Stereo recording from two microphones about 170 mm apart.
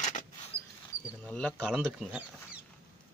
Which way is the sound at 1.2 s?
5° left (ahead or behind).